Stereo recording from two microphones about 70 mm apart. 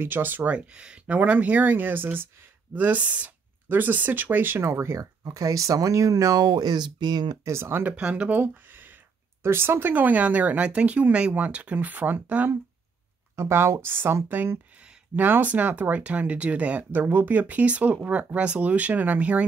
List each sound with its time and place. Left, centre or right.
0.0 s speech: right
7.4 s speech: right
7.9 s speech: centre
13.4 s speech: right